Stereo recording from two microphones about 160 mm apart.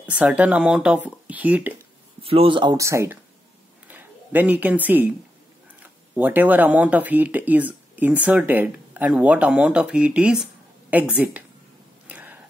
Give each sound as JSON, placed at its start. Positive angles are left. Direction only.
{"t": 0.0, "sound": "speech", "side_deg": -10}
{"t": 2.2, "sound": "speech", "side_deg": -35}
{"t": 12.1, "sound": "a sound", "side_deg": -10}